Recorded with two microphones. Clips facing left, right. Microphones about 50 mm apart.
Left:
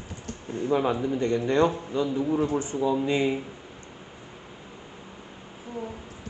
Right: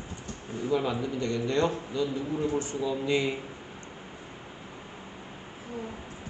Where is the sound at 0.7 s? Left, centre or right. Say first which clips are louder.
Left 4 dB; left.